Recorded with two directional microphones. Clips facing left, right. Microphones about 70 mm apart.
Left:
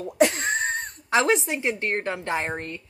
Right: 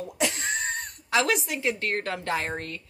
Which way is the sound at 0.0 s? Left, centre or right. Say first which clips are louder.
Left 8 dB; left.